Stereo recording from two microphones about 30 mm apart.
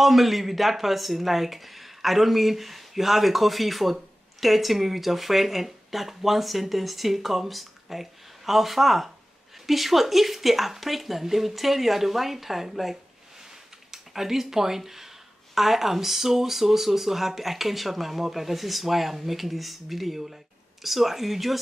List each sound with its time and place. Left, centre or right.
0.0 s speech: centre
14.1 s speech: centre